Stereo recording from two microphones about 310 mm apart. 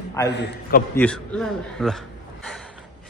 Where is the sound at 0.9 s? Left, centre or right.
Centre.